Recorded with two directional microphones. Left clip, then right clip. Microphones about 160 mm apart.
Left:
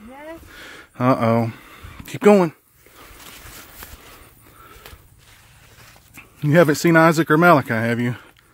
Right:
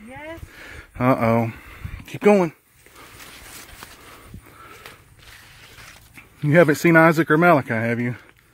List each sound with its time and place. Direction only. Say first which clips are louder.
0.6 s speech: left 1 dB; 15° left (ahead or behind)
6.4 s speech: even; 10° left (ahead or behind)